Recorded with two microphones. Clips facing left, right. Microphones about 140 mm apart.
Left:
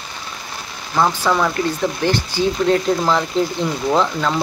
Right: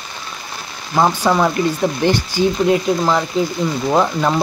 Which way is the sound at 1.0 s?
15° right (ahead or behind).